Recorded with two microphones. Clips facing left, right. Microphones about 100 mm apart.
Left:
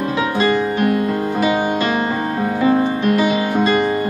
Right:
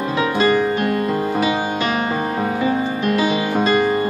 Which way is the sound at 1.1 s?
5° right (ahead or behind).